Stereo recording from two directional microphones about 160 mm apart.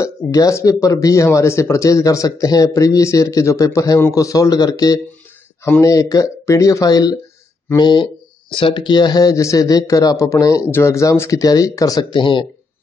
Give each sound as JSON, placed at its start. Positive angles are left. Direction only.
{"t": 0.0, "sound": "speech", "side_deg": 20}